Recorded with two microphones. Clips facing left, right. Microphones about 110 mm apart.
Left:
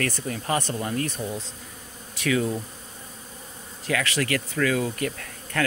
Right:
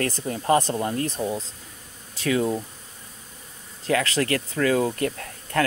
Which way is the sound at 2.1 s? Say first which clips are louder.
Right 2 dB; 30° right (ahead or behind).